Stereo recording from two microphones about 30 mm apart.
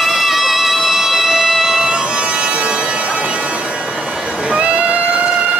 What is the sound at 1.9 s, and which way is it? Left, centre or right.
Bagpipes, right.